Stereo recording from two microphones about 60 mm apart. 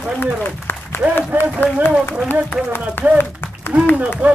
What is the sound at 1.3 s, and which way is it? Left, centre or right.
Speech, right.